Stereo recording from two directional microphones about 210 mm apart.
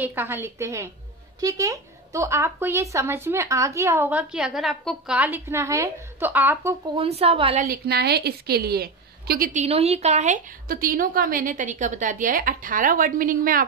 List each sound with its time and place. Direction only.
0.0 s speech: 10° right (ahead or behind)
7.0 s a woman's voice: 30° right (ahead or behind)
7.6 s a woman's voice: 45° right (ahead or behind)